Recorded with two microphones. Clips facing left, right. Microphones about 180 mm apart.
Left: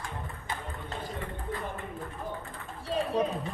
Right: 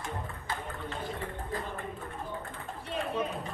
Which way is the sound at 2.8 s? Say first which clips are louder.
Left 5 dB; 35° left (ahead or behind).